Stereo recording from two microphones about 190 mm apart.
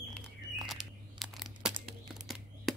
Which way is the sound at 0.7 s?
Centre (ahead or behind).